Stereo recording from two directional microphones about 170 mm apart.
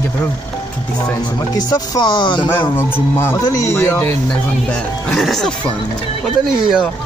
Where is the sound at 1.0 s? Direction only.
20° left (ahead or behind).